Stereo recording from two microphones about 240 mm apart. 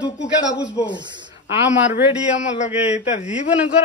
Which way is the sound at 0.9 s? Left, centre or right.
Centre.